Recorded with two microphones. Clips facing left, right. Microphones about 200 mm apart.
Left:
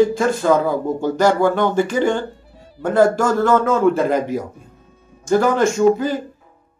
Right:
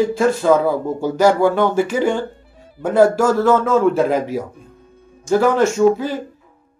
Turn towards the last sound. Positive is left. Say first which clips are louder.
# even
turn(degrees=-5)  # may be behind; listen again after turning